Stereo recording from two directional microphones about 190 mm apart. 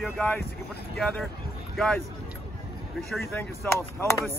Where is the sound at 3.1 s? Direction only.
Centre (ahead or behind).